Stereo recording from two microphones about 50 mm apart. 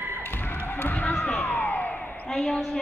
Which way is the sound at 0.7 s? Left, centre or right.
Left.